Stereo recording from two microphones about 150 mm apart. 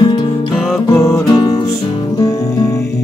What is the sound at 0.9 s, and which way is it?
Music, 20° left (ahead or behind).